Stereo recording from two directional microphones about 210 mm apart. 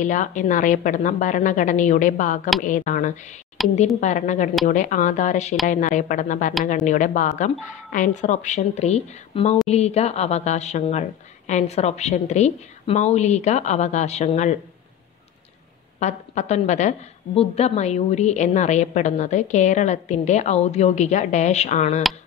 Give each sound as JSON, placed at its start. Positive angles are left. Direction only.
{"t": 0.0, "sound": "a woman's voice", "side_deg": 35}
{"t": 16.0, "sound": "a woman's voice", "side_deg": 35}